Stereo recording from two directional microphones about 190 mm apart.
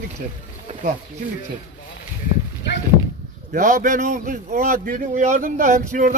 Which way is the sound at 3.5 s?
45° right (ahead or behind).